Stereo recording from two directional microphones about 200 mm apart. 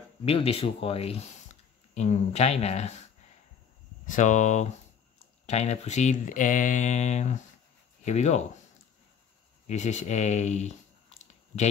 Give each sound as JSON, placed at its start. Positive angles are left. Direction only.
{"t": 0.2, "sound": "speech", "side_deg": 30}
{"t": 4.1, "sound": "speech", "side_deg": 40}
{"t": 9.7, "sound": "speech", "side_deg": 35}